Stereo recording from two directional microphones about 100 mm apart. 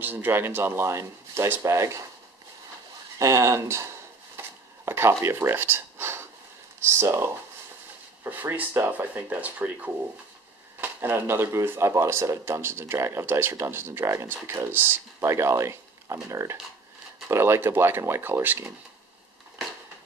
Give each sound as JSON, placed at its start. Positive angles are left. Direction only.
{"t": 0.0, "sound": "speech", "side_deg": -20}
{"t": 3.2, "sound": "speech", "side_deg": -30}
{"t": 4.4, "sound": "a sound", "side_deg": -25}
{"t": 7.0, "sound": "speech", "side_deg": -25}